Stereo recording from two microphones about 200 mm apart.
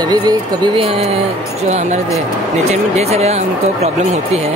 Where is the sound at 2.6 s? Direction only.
30° right (ahead or behind).